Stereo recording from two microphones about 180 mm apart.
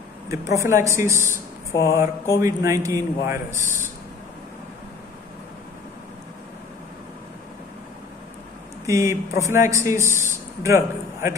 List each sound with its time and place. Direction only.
0.3 s speech: 15° right (ahead or behind)
1.7 s speech: 15° left (ahead or behind)
2.4 s speech: 15° right (ahead or behind)
8.8 s a man's voice: 15° right (ahead or behind)